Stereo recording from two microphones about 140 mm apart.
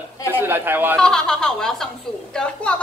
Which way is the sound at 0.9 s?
5° left (ahead or behind).